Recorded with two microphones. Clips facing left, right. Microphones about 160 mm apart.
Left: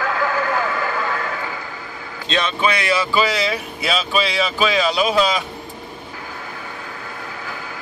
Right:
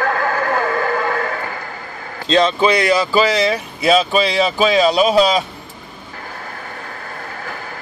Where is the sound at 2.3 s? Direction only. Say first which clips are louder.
Right 6 dB; 35° right (ahead or behind).